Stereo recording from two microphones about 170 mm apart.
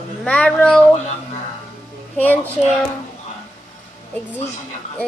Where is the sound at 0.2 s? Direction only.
5° left (ahead or behind).